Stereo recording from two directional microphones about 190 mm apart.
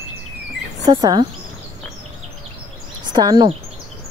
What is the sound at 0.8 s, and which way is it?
Speech, 20° right (ahead or behind).